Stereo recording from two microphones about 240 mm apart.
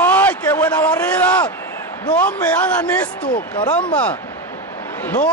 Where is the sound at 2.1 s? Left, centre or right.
Centre.